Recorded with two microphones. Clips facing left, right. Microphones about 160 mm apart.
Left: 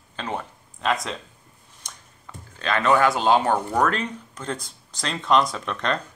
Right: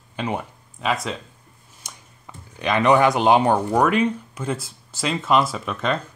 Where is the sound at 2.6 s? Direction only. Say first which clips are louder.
Right 3 dB; 15° right (ahead or behind).